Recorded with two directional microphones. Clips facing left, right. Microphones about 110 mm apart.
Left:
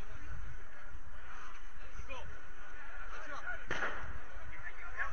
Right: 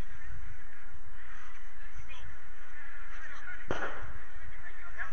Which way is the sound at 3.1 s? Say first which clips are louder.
Left 5 dB; 55° left (ahead or behind).